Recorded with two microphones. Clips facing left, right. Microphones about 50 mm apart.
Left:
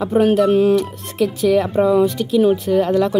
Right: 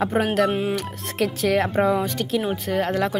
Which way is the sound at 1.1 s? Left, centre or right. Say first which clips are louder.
Left 5 dB; right.